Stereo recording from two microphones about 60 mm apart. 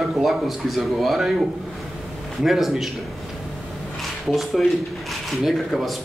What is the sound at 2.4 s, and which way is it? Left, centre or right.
Speech, centre.